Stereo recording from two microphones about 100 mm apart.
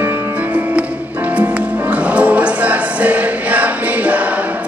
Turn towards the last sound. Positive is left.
turn(degrees=-15)  # may be behind; listen again after turning